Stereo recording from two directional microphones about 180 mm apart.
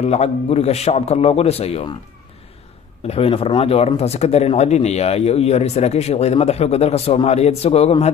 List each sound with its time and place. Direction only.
0.0 s speech: 35° left (ahead or behind)
3.1 s speech: 30° left (ahead or behind)